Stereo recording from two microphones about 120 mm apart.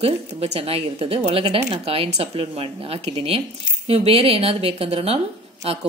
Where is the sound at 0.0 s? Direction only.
55° right (ahead or behind).